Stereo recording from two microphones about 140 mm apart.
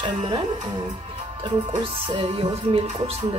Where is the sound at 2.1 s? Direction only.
40° right (ahead or behind).